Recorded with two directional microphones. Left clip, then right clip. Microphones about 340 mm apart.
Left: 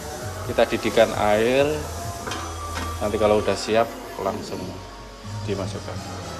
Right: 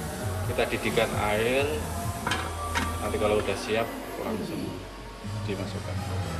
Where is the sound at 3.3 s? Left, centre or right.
Left.